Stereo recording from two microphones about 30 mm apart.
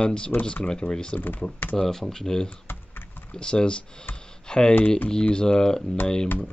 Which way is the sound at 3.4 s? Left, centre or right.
Left.